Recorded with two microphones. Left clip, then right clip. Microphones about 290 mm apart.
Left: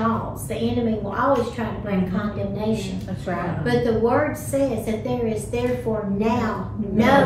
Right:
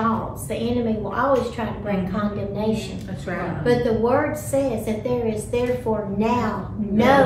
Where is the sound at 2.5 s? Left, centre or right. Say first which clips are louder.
Right 1 dB; centre.